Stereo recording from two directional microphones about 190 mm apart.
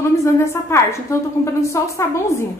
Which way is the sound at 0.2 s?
15° left (ahead or behind).